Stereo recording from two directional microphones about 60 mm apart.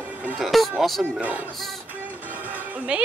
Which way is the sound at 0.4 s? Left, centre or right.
Centre.